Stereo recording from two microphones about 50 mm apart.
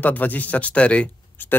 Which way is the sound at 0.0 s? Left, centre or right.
Left.